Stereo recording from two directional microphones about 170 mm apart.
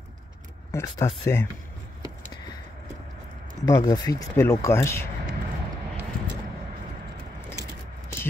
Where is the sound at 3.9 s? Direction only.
20° left (ahead or behind).